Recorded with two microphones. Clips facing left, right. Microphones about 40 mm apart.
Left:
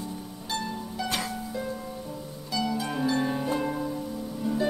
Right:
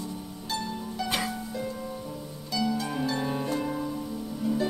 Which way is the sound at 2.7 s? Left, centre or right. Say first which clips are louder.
Left 4 dB; centre.